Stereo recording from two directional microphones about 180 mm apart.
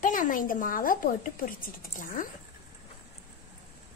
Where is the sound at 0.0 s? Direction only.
45° left (ahead or behind).